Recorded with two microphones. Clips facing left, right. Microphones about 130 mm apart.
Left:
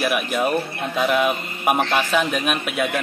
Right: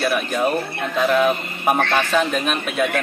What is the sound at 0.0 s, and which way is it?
A man's voice, 5° left (ahead or behind).